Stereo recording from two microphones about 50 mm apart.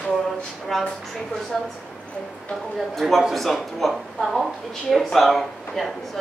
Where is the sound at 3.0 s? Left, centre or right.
Centre.